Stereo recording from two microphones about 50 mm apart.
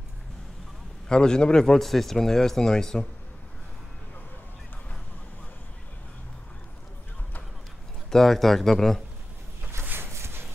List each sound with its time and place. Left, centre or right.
1.0 s speech: centre
8.1 s speech: centre
10.1 s a sound: right